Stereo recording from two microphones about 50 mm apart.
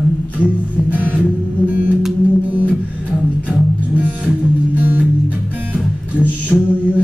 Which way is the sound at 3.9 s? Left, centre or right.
Right.